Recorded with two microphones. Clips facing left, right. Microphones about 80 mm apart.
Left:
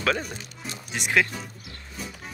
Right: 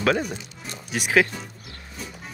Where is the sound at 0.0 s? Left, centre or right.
Right.